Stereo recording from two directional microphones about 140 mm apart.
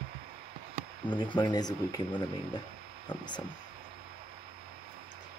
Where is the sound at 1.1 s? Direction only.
35° left (ahead or behind).